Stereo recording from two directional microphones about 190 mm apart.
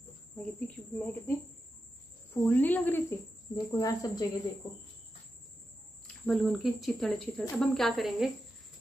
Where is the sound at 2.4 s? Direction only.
10° left (ahead or behind).